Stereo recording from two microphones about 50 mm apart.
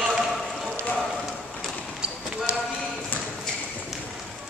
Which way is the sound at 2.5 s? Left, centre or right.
Right.